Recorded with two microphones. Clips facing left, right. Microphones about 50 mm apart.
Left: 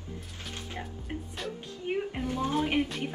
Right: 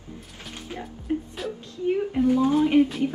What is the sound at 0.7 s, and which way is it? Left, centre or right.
Speech, centre.